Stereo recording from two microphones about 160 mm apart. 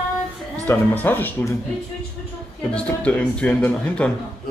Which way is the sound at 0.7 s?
10° left (ahead or behind).